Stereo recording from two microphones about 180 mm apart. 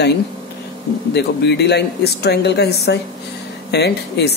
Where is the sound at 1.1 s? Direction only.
70° left (ahead or behind).